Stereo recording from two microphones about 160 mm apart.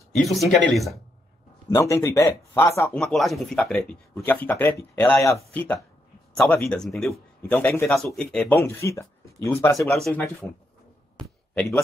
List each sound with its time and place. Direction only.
0.1 s speech: centre (ahead or behind)
1.7 s speech: 15° left (ahead or behind)
3.0 s speech: centre (ahead or behind)
7.5 s speech: 15° left (ahead or behind)
9.8 s speech: centre (ahead or behind)
11.1 s a sound: centre (ahead or behind)